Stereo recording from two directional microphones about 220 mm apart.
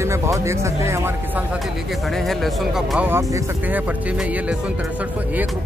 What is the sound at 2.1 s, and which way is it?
Speech, centre (ahead or behind).